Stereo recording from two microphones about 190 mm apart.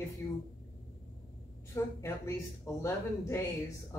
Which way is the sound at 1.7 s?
15° left (ahead or behind).